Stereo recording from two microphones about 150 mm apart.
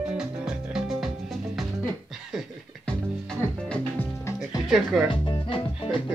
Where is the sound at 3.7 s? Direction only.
15° left (ahead or behind).